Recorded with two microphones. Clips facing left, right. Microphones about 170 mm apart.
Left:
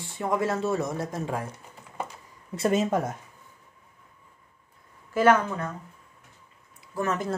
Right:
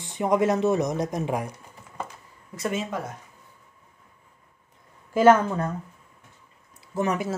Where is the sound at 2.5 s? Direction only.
35° left (ahead or behind).